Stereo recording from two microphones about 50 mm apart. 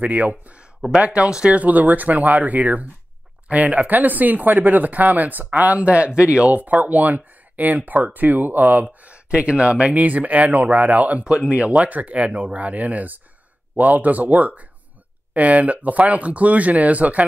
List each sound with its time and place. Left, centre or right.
0.0 s speech: right
9.0 s speech: right